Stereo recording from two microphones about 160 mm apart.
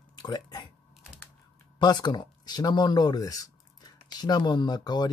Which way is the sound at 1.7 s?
25° left (ahead or behind).